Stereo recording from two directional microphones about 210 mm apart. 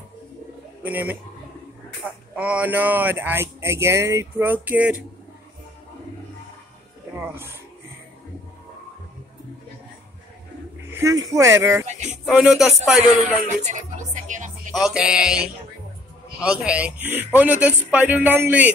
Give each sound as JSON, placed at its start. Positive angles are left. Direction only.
{"t": 0.8, "sound": "speech", "side_deg": -5}
{"t": 2.3, "sound": "speech", "side_deg": -5}
{"t": 7.2, "sound": "a sound", "side_deg": -10}
{"t": 10.9, "sound": "a man's voice", "side_deg": -15}
{"t": 13.5, "sound": "music", "side_deg": -35}
{"t": 14.7, "sound": "a man's voice", "side_deg": 0}